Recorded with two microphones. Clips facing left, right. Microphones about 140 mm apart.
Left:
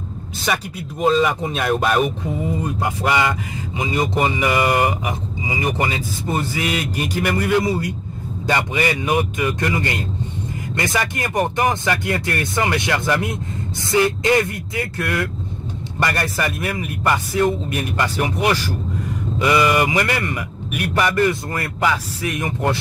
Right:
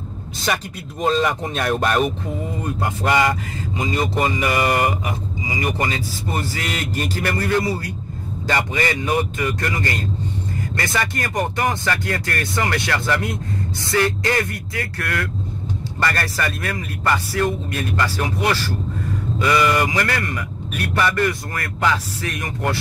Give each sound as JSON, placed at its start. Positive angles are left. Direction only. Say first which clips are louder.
{"t": 1.0, "sound": "speech", "louder": "left 2 dB", "side_deg": 0}